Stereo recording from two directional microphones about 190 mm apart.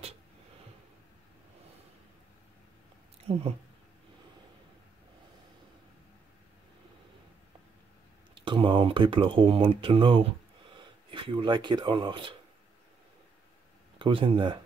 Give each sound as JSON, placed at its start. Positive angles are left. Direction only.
{"t": 3.3, "sound": "speech", "side_deg": -30}
{"t": 8.4, "sound": "speech", "side_deg": -25}
{"t": 13.9, "sound": "speech", "side_deg": -25}